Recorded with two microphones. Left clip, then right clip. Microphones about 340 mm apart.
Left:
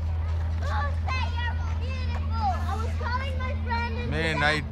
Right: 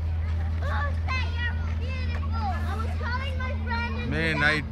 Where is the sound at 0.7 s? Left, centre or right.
Centre; by 4.0 s left.